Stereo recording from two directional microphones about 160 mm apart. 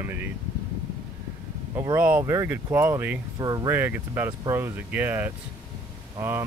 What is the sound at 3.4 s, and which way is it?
Speech, 25° right (ahead or behind).